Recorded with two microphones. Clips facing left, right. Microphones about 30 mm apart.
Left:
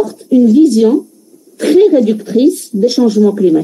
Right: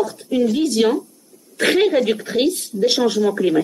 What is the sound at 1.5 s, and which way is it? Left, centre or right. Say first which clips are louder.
Speech: left 8 dB; right.